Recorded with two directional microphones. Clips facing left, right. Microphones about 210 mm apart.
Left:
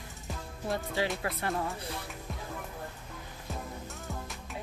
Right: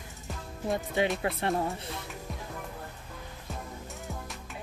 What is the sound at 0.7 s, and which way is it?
Speech, 20° right (ahead or behind).